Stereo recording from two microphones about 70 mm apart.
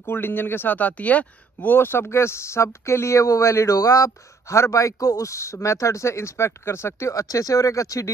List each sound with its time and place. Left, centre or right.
0.0 s speech: left
5.3 s speech: left